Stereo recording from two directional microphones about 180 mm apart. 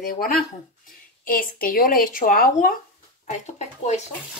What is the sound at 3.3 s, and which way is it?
Speech, 40° left (ahead or behind).